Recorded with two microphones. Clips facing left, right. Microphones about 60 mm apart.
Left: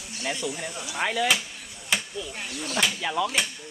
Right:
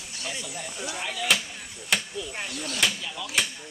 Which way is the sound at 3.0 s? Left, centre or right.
Left.